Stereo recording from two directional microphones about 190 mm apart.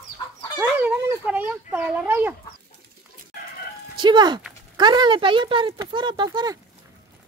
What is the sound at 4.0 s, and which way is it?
Speech, 25° right (ahead or behind).